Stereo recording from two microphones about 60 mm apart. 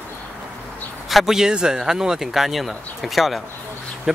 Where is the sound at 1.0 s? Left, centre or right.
Centre.